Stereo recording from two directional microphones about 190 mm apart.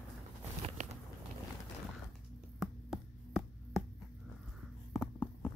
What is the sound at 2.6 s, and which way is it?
Chopping, centre (ahead or behind).